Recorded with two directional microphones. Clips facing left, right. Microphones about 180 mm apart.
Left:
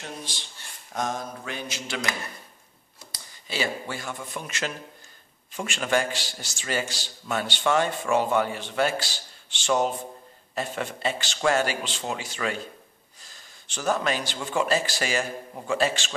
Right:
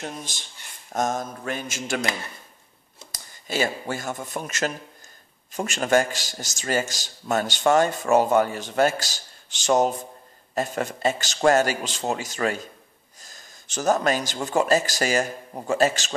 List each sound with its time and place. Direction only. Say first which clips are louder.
0.0 s a man's voice: right 3 dB; 45° right (ahead or behind)
3.1 s a man's voice: right 6 dB; 45° right (ahead or behind)